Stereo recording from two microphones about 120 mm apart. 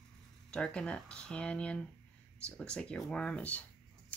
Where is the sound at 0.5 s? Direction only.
10° left (ahead or behind).